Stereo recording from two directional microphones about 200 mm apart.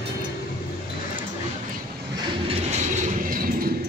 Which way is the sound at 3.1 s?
40° right (ahead or behind).